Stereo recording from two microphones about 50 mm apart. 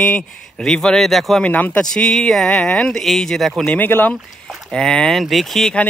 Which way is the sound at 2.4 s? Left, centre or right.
Left.